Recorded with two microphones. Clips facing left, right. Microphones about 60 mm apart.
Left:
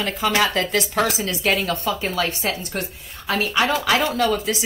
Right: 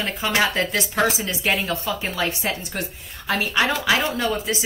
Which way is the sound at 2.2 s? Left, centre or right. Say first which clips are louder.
Left 1 dB; right.